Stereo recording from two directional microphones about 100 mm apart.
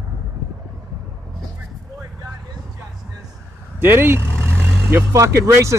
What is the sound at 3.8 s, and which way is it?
Speech, 20° right (ahead or behind).